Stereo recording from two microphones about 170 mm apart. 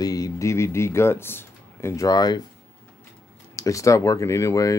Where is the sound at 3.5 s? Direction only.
20° left (ahead or behind).